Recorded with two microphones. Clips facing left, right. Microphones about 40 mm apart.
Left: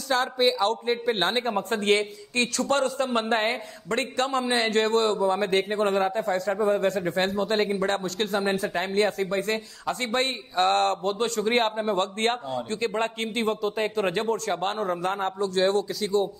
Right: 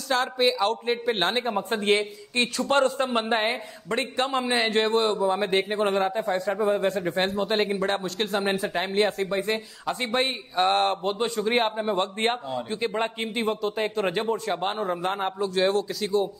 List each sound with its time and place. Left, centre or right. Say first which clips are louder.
0.1 s a man's voice: even; centre
1.6 s a man's voice: even; centre
2.3 s a man's voice: even; centre
2.7 s a man's voice: right 3 dB; right
3.1 s a man's voice: even; centre
5.9 s a man's voice: even; centre
15.0 s speech: even; right
15.3 s a man's voice: left 1 dB; centre